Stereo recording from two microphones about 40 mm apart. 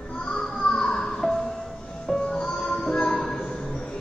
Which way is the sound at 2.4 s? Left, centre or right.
Centre.